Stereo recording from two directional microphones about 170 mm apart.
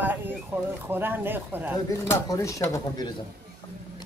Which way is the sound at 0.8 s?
10° right (ahead or behind).